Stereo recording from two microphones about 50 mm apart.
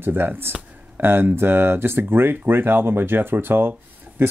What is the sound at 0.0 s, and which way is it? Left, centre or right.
Speech, right.